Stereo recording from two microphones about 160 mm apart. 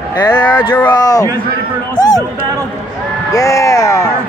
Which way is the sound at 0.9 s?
25° left (ahead or behind).